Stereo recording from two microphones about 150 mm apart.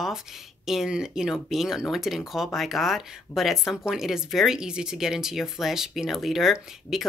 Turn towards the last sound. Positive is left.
turn(degrees=0)  # may be behind; listen again after turning